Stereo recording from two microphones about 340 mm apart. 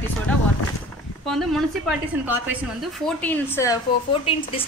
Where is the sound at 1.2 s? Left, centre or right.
Centre.